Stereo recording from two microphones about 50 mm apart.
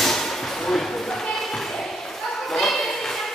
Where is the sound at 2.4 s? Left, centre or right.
Centre.